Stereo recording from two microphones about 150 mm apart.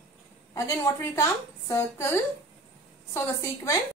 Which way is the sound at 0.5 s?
20° left (ahead or behind).